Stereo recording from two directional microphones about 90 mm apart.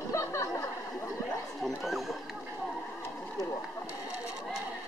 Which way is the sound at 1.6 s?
Centre (ahead or behind).